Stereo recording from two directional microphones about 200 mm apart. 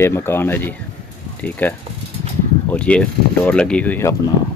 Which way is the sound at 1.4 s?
5° left (ahead or behind).